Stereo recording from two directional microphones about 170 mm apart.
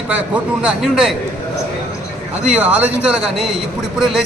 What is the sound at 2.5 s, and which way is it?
A man's voice, 10° right (ahead or behind).